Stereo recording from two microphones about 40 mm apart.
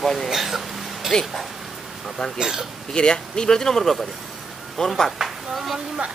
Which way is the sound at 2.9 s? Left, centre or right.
Left.